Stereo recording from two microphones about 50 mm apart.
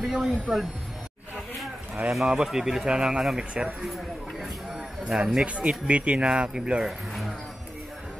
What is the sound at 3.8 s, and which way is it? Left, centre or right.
Speech, centre.